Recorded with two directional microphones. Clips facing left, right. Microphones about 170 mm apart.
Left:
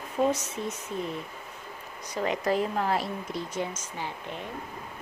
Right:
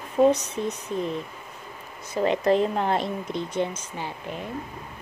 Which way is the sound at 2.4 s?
25° right (ahead or behind).